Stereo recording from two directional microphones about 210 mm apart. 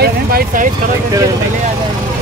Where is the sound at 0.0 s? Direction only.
45° right (ahead or behind).